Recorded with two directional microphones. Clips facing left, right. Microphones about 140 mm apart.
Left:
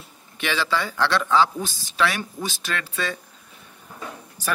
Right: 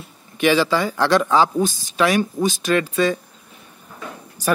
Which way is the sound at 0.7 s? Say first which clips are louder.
Right 5 dB; 40° right (ahead or behind).